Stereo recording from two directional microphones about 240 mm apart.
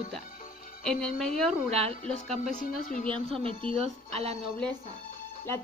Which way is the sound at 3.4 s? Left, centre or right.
Right.